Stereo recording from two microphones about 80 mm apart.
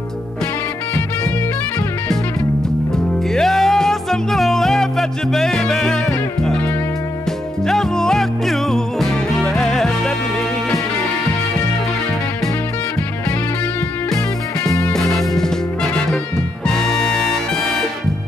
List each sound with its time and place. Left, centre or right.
3.3 s music: centre
7.6 s music: centre
14.6 s music: left
14.9 s music: centre